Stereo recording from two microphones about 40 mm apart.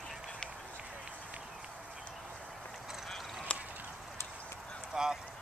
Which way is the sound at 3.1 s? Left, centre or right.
Centre.